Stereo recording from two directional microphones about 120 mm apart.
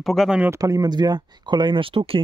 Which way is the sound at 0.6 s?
30° right (ahead or behind).